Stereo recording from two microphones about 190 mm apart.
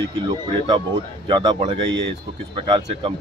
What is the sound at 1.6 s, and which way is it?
Speech, 30° right (ahead or behind).